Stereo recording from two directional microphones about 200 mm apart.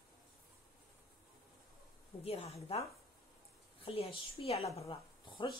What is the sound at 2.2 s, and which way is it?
A woman's voice, 30° left (ahead or behind).